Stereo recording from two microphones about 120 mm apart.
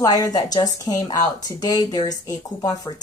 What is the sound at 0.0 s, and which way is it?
Speech, 30° left (ahead or behind).